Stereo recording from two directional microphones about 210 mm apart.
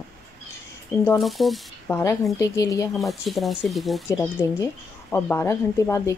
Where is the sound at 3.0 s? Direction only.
Centre (ahead or behind).